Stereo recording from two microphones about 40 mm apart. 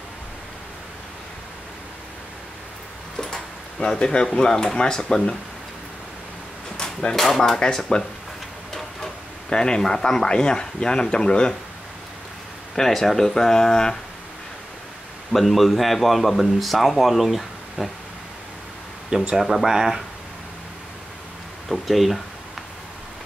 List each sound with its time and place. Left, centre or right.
3.2 s speech: centre
6.8 s a sound: centre
7.2 s speech: centre
12.7 s speech: centre
15.3 s speech: centre
19.3 s speech: centre
21.6 s speech: centre